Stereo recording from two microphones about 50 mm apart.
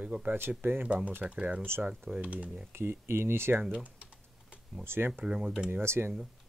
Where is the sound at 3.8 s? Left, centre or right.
Right.